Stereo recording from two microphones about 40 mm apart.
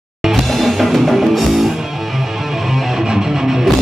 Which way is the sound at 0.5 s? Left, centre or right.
Centre.